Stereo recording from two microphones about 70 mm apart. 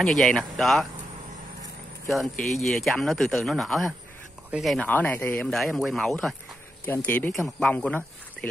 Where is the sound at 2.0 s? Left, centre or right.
Centre.